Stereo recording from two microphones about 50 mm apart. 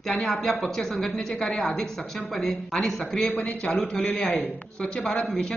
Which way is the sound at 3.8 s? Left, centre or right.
Centre.